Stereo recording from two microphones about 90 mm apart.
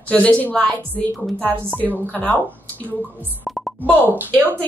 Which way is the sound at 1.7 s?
15° left (ahead or behind).